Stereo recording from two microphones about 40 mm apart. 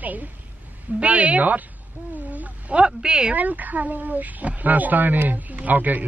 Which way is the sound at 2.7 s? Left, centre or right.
Right.